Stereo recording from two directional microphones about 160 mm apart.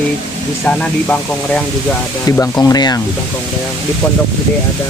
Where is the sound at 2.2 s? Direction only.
20° left (ahead or behind).